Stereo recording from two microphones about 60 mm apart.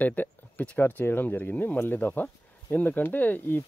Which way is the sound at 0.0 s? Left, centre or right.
Left.